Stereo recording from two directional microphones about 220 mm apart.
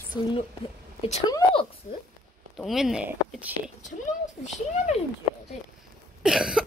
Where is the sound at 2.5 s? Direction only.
Centre (ahead or behind).